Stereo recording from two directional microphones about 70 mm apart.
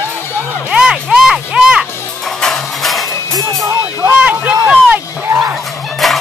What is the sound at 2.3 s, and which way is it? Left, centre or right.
Music, centre.